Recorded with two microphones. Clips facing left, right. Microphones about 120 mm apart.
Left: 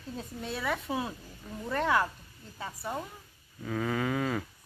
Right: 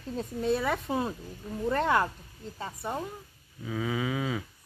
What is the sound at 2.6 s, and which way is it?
Speech, 20° right (ahead or behind).